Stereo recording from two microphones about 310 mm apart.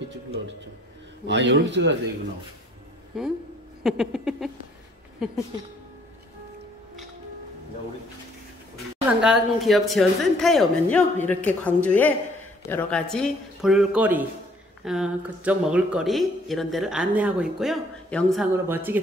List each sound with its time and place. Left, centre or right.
1.2 s a man's voice: right
3.1 s speech: centre
9.2 s speech: centre